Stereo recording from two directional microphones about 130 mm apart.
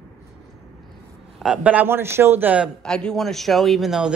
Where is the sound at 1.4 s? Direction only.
10° right (ahead or behind).